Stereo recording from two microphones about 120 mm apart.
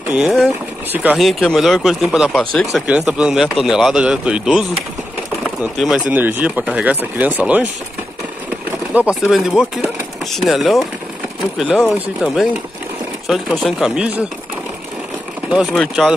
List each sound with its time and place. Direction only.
0.1 s speech: 5° right (ahead or behind)
5.8 s speech: 5° right (ahead or behind)
8.9 s speech: 5° right (ahead or behind)
15.5 s speech: centre (ahead or behind)